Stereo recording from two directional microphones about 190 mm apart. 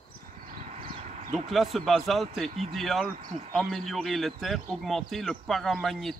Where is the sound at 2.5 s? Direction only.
35° right (ahead or behind).